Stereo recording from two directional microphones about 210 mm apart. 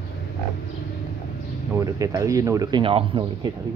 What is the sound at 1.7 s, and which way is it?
Speech, 15° right (ahead or behind).